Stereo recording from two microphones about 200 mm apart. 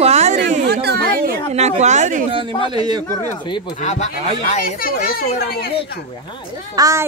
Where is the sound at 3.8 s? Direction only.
35° left (ahead or behind).